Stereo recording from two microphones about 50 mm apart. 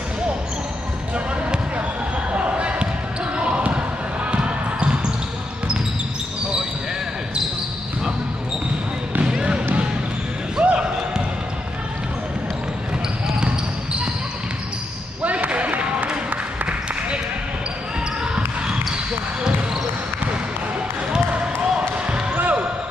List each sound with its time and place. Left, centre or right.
2.3 s basketball bounce: right
9.2 s basketball bounce: centre
15.2 s a sound: right
18.2 s a sound: centre
21.1 s basketball bounce: centre
22.3 s basketball bounce: right